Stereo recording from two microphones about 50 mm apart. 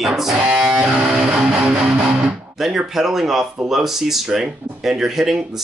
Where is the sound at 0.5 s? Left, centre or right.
Centre.